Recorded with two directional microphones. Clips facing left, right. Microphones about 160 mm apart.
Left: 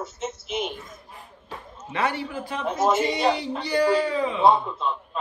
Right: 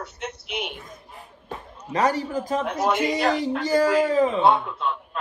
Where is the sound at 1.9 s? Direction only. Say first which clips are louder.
Right 4 dB; 40° right (ahead or behind).